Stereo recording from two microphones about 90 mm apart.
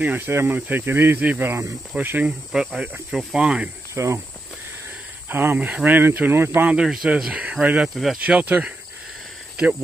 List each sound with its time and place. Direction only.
0.0 s speech: 20° right (ahead or behind)
2.5 s speech: 5° right (ahead or behind)
3.9 s speech: 35° right (ahead or behind)
5.3 s speech: 25° right (ahead or behind)
6.7 s speech: 10° right (ahead or behind)
7.9 s speech: centre (ahead or behind)
8.2 s speech: 15° right (ahead or behind)